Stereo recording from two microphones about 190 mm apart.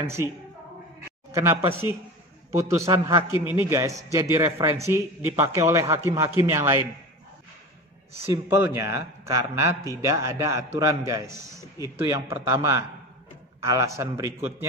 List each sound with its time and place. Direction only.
1.3 s a man's voice: 15° right (ahead or behind)
3.3 s a man's voice: 25° left (ahead or behind)
3.6 s a man's voice: 15° right (ahead or behind)
8.3 s a man's voice: 10° right (ahead or behind)